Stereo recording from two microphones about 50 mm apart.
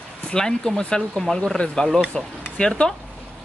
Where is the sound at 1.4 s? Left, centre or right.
Centre.